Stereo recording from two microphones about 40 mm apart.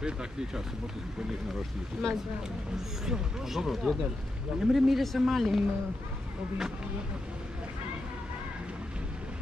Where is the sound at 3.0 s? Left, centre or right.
Centre.